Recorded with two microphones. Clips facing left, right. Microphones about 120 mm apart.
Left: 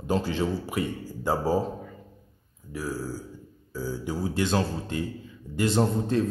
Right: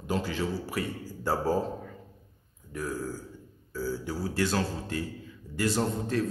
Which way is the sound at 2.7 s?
5° left (ahead or behind).